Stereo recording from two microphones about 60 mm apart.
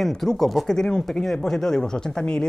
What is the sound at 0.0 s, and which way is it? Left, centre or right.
Speech, centre.